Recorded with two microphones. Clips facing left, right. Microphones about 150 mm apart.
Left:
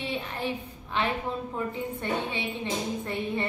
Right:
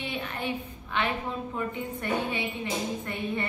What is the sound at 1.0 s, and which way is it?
A woman's voice, 30° left (ahead or behind).